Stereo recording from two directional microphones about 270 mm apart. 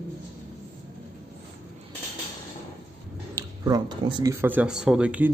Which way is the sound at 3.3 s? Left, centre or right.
Centre.